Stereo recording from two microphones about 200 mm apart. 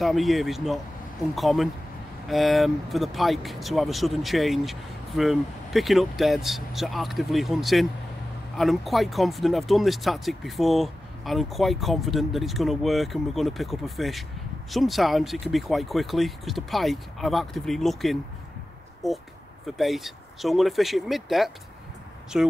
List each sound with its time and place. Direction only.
0.0 s speech: centre (ahead or behind)